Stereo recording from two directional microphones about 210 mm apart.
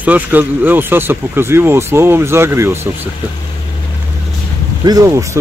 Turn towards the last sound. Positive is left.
turn(degrees=-15)  # may be behind; listen again after turning